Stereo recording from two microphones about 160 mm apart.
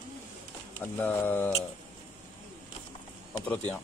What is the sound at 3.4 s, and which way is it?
Speech, 10° left (ahead or behind).